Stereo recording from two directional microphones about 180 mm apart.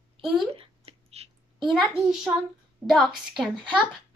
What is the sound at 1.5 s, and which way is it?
A child's voice, centre (ahead or behind).